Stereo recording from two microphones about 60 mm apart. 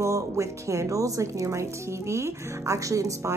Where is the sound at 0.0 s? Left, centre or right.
Right.